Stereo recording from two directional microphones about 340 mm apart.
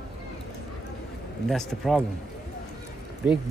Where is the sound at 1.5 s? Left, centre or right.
Centre.